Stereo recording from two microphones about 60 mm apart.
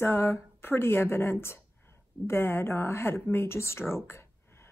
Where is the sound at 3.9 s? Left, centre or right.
Left.